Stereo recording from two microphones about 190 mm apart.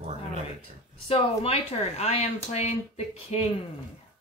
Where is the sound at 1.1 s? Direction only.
30° left (ahead or behind).